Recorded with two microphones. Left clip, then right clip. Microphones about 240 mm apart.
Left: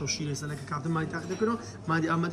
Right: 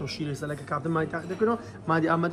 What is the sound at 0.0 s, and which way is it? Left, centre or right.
A man's voice, centre.